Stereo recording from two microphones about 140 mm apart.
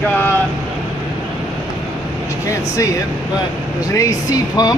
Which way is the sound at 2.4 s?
20° left (ahead or behind).